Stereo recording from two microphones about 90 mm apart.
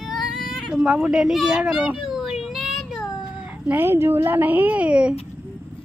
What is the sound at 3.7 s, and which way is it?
A woman's voice, 25° right (ahead or behind).